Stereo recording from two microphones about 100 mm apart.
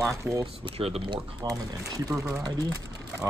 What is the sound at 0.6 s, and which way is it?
Speech, 80° right.